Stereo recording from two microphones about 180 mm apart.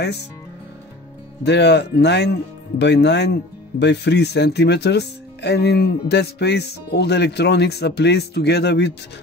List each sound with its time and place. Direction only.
0.0 s speech: 70° left (ahead or behind)
1.4 s speech: 70° left (ahead or behind)